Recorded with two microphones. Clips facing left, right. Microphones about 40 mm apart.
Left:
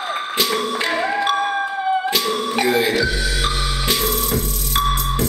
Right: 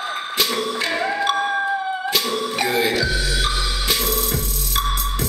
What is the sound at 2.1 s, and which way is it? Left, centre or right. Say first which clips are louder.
Music: left 2 dB; centre.